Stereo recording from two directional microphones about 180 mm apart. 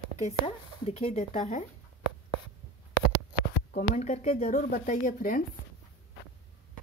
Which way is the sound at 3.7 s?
40° left (ahead or behind).